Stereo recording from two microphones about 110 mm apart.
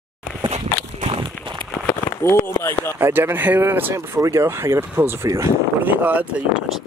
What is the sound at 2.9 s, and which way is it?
Speech, 20° right (ahead or behind).